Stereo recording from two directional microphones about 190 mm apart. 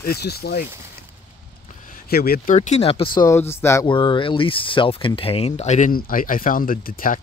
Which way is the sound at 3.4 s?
15° left (ahead or behind).